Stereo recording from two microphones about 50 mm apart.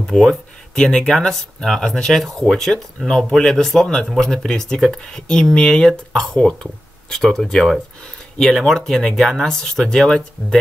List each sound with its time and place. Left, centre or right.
0.0 s speech: centre
7.2 s speech: centre